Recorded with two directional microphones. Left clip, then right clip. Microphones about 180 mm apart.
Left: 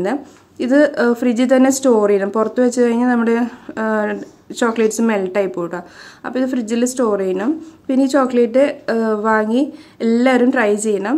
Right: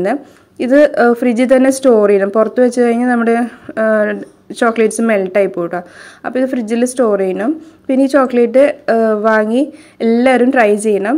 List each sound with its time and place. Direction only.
0.0 s speech: 15° right (ahead or behind)